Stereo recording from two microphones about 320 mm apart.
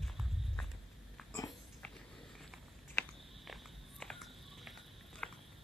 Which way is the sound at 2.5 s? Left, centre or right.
Centre.